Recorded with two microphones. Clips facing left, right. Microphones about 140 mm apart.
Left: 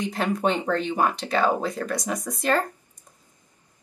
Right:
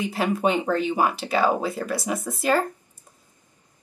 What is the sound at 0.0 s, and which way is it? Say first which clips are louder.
Speech: right 1 dB; 5° right (ahead or behind).